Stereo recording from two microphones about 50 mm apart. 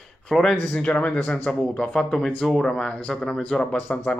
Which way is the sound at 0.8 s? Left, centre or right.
Left.